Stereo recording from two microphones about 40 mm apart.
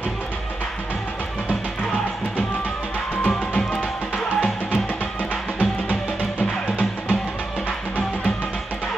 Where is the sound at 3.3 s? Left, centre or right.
Left.